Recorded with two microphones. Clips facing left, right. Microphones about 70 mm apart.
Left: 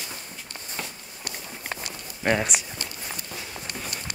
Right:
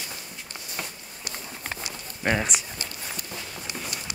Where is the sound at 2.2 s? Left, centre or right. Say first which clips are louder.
Left 2 dB; centre.